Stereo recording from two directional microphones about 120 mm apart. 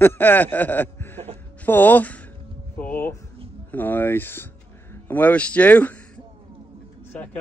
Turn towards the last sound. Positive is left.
turn(degrees=10)  # may be behind; listen again after turning